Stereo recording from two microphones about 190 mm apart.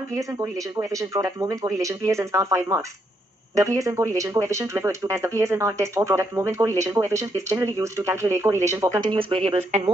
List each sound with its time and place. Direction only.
0.1 s speech: 15° right (ahead or behind)